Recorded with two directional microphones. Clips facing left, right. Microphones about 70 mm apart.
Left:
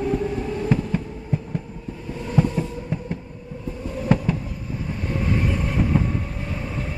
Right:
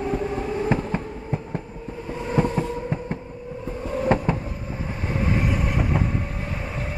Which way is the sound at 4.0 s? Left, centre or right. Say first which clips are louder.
Right 1 dB; right.